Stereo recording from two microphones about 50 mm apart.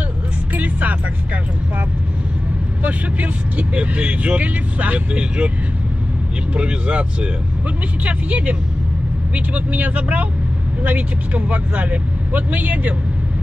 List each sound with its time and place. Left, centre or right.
0.6 s music: right
2.8 s speech: right
6.5 s speech: right